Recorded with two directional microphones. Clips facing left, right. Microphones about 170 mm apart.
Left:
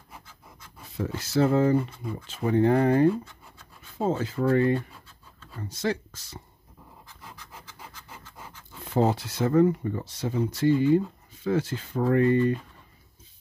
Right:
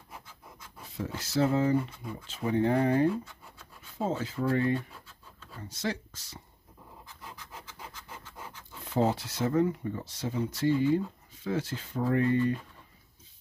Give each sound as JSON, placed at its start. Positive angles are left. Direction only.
{"t": 0.9, "sound": "speech", "side_deg": 60}
{"t": 4.1, "sound": "speech", "side_deg": 55}
{"t": 5.8, "sound": "speech", "side_deg": 55}
{"t": 8.9, "sound": "speech", "side_deg": 55}